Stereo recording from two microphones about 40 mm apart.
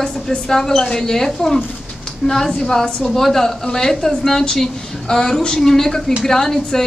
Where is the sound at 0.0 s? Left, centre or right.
Centre.